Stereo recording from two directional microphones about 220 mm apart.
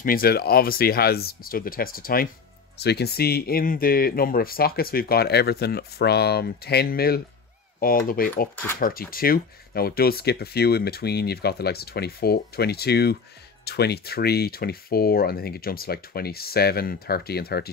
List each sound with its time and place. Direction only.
0.0 s speech: 40° left (ahead or behind)
7.8 s cutlery: 40° left (ahead or behind)
8.7 s speech: 40° left (ahead or behind)